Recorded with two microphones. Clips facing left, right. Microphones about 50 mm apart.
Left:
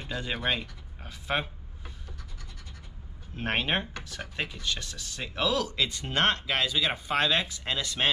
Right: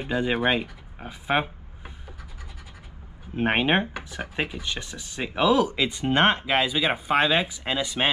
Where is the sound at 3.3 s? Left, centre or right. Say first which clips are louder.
Right 7 dB; right.